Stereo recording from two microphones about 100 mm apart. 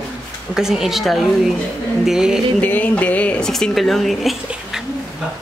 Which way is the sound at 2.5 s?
15° left (ahead or behind).